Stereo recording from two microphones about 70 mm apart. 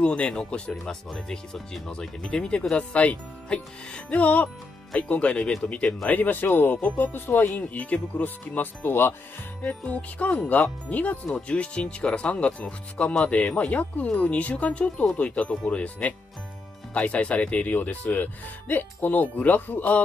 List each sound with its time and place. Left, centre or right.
0.0 s speech: centre